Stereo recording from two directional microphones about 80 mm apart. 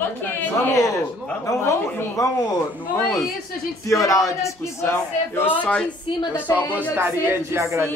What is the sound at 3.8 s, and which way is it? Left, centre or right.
Speech, left.